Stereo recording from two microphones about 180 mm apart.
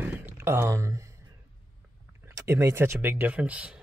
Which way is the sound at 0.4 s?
15° right (ahead or behind).